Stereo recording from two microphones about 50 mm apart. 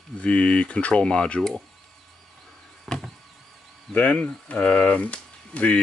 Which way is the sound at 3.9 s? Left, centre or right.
Left.